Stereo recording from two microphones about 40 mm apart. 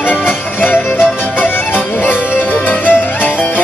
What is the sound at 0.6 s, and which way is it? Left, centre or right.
Music, left.